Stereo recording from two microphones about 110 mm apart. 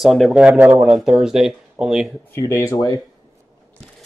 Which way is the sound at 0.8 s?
Centre (ahead or behind).